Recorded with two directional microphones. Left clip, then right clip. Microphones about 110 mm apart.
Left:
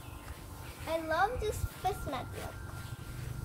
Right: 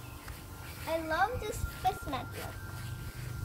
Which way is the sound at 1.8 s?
20° left (ahead or behind).